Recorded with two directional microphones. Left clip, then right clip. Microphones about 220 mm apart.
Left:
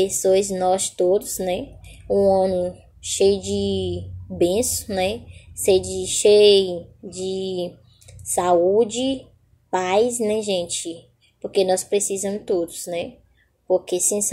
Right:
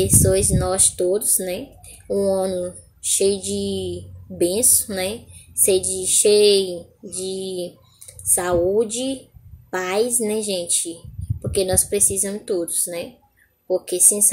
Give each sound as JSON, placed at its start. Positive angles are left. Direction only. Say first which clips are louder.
{"t": 0.0, "sound": "speech", "louder": "left 1 dB", "side_deg": -15}